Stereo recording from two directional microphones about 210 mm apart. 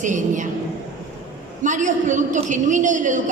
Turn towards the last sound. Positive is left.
turn(degrees=-35)  # may be behind; listen again after turning